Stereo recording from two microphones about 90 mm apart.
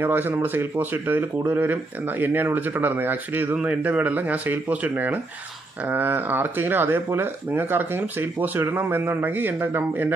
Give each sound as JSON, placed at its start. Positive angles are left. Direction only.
{"t": 0.0, "sound": "speech", "side_deg": -25}